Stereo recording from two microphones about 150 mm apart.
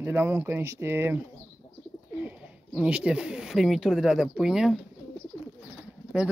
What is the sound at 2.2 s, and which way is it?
Speech, 5° right (ahead or behind).